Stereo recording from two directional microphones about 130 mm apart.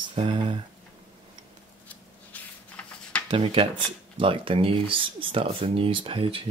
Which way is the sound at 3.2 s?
40° right (ahead or behind).